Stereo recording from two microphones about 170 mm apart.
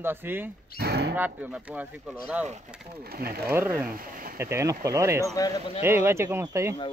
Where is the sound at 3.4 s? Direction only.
10° right (ahead or behind).